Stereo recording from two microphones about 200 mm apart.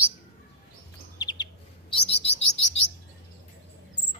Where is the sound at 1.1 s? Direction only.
20° left (ahead or behind).